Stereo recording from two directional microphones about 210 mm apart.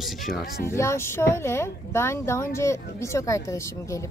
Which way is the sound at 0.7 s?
15° left (ahead or behind).